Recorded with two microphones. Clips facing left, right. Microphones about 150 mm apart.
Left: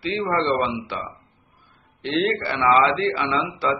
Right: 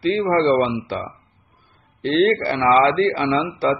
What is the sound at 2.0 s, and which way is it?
A man's voice, 40° right (ahead or behind).